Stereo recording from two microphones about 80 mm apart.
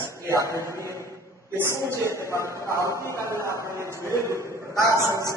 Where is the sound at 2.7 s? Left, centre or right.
Right.